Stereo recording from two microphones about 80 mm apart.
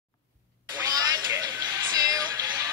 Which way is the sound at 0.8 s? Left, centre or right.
Right.